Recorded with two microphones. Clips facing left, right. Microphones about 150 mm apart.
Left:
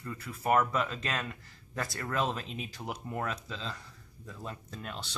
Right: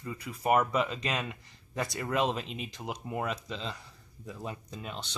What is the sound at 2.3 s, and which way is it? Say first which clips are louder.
Speech: right 2 dB; centre (ahead or behind).